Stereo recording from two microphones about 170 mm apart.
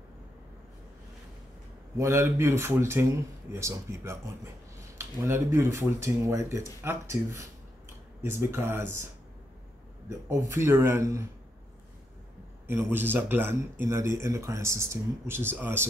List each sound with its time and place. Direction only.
2.0 s speech: 15° right (ahead or behind)
10.3 s speech: 15° right (ahead or behind)
12.6 s speech: 10° right (ahead or behind)